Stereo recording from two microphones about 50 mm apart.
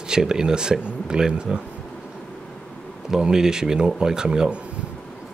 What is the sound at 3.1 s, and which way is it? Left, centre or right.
Speech, centre.